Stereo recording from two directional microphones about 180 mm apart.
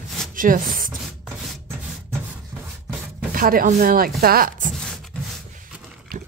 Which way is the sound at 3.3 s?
50° right (ahead or behind).